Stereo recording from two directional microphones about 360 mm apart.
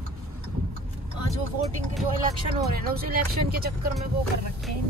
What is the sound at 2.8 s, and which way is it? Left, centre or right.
Speech, right.